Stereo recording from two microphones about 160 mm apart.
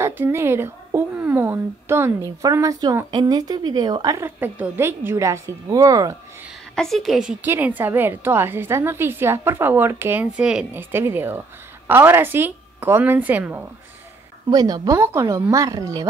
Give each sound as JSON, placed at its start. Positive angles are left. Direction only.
{"t": 0.0, "sound": "speech", "side_deg": -15}
{"t": 6.7, "sound": "speech", "side_deg": 5}
{"t": 14.5, "sound": "speech", "side_deg": -25}